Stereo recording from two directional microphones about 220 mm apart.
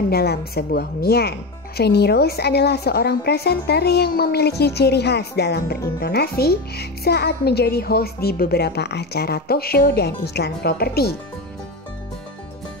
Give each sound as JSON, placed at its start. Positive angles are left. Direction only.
{"t": 0.1, "sound": "speech", "side_deg": 45}